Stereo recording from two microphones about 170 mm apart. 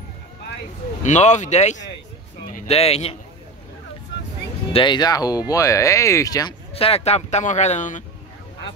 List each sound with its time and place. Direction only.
1.0 s speech: 45° left (ahead or behind)
4.7 s speech: 25° left (ahead or behind)
6.7 s speech: 35° left (ahead or behind)